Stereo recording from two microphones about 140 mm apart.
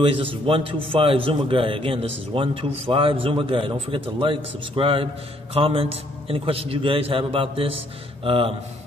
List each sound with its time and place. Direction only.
0.0 s a man's voice: 40° right (ahead or behind)